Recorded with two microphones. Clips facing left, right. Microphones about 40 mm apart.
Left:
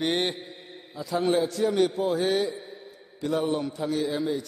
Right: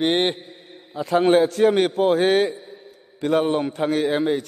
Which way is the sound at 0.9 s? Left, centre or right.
Right.